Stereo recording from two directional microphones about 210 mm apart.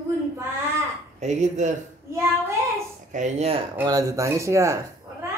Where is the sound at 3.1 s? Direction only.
35° right (ahead or behind).